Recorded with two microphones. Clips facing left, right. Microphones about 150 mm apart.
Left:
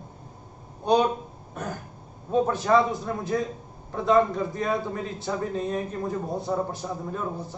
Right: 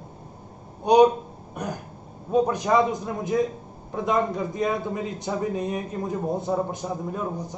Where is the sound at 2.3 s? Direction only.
15° right (ahead or behind).